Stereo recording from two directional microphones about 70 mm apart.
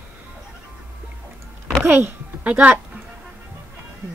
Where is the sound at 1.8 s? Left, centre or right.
Right.